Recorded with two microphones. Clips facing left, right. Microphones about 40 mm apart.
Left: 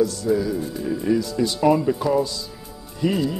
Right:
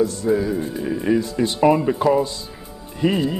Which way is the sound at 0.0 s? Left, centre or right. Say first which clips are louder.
Right 1 dB; right.